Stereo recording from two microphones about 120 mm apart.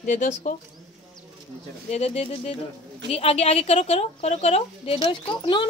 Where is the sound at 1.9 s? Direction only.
60° left (ahead or behind).